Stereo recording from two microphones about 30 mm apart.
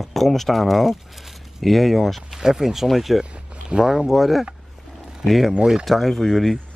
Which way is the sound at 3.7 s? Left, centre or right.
Right.